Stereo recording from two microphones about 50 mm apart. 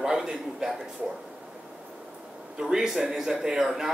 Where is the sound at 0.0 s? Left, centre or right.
Centre.